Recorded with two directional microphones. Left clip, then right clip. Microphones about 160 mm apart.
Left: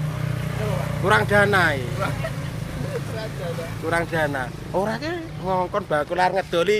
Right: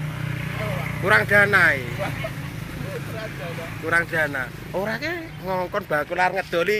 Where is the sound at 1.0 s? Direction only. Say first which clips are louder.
Right 1 dB; centre (ahead or behind).